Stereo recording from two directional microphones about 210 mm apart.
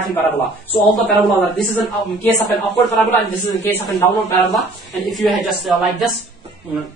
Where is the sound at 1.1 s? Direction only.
Centre (ahead or behind).